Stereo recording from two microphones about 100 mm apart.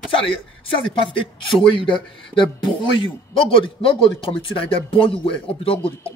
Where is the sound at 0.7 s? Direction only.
60° left (ahead or behind).